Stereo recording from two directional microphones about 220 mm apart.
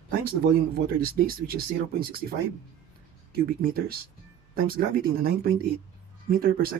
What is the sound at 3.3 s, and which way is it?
Speech, 40° right (ahead or behind).